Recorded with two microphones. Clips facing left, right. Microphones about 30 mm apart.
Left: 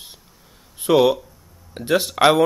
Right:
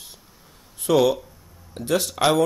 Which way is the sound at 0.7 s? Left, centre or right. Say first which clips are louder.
Left 3 dB; left.